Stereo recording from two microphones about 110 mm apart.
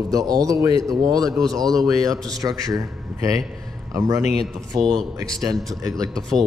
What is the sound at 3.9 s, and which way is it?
Speech, 25° right (ahead or behind).